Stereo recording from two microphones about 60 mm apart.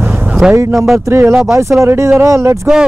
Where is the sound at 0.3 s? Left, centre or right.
Right.